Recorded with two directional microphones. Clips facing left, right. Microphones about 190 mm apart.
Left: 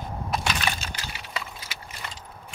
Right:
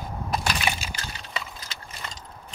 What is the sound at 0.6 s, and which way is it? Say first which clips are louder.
Wood: right 1 dB; 10° right (ahead or behind).